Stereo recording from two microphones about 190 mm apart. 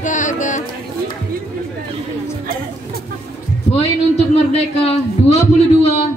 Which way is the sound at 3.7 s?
30° left (ahead or behind).